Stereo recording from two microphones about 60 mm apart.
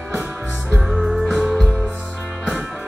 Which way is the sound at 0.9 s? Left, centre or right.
Centre.